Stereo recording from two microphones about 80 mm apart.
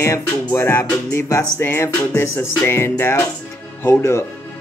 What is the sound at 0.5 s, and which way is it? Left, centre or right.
Speech, left.